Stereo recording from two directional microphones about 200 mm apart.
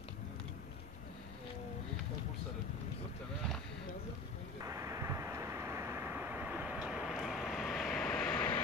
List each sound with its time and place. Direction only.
4.6 s vehicle: 15° right (ahead or behind); by 8.5 s 5° left (ahead or behind)